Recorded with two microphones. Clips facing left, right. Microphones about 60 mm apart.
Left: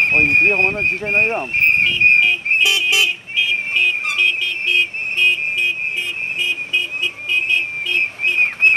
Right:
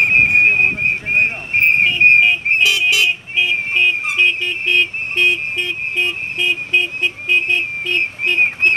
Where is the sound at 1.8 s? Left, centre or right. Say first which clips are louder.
Right 2 dB; right.